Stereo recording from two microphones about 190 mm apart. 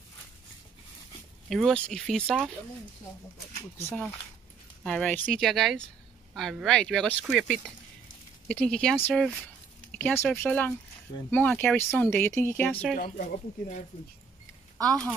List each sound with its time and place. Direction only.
1.5 s speech: centre (ahead or behind)
4.8 s speech: 5° left (ahead or behind)
12.9 s speech: 45° left (ahead or behind)